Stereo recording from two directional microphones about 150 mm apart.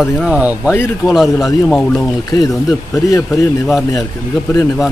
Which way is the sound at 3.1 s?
20° left (ahead or behind).